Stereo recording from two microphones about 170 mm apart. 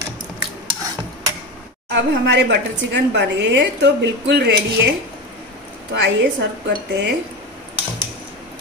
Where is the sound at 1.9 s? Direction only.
90° right.